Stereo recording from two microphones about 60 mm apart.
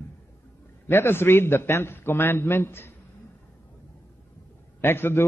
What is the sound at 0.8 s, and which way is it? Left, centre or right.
A man's voice, left.